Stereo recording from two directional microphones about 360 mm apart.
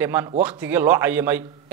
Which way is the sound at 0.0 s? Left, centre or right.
Centre.